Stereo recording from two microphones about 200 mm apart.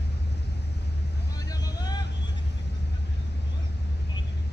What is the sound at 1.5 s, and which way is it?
Vehicle, 20° left (ahead or behind).